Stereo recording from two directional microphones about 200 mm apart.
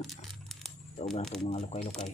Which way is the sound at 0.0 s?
Centre (ahead or behind).